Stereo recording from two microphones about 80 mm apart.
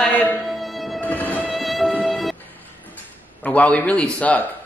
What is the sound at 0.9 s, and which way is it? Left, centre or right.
Music, left.